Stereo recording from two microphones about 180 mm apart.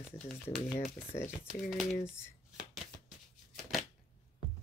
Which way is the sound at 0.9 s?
15° left (ahead or behind).